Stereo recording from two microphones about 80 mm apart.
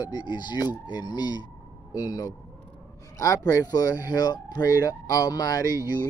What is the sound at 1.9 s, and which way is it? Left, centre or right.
Speech, left.